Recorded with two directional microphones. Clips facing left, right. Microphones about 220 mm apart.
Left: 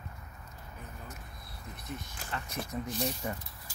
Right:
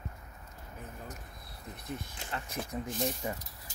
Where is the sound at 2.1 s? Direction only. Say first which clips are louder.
Even; 20° right (ahead or behind).